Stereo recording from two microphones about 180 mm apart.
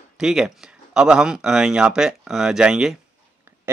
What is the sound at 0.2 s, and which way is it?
Speech, 5° right (ahead or behind).